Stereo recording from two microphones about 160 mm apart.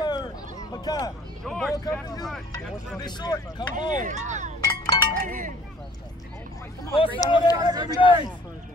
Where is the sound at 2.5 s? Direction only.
25° left (ahead or behind).